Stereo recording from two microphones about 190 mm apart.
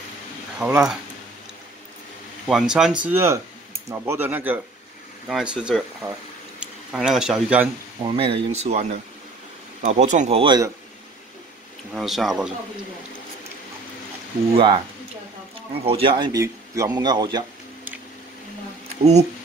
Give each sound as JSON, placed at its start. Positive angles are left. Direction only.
{"t": 0.6, "sound": "speech", "side_deg": -5}
{"t": 2.4, "sound": "speech", "side_deg": -5}
{"t": 8.0, "sound": "speech", "side_deg": -25}
{"t": 11.9, "sound": "speech", "side_deg": 0}
{"t": 14.5, "sound": "speech", "side_deg": -25}